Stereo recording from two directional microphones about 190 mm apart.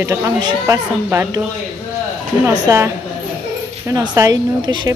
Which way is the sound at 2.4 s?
15° right (ahead or behind).